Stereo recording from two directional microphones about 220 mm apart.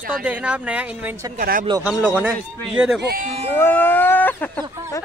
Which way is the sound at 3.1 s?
40° right (ahead or behind).